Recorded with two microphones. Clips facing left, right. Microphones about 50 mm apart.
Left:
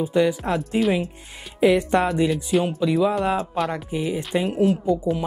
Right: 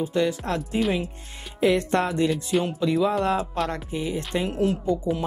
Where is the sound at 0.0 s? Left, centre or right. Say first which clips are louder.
Left 4 dB; centre.